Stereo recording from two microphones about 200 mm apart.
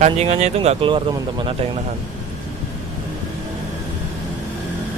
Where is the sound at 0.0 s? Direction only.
35° right (ahead or behind).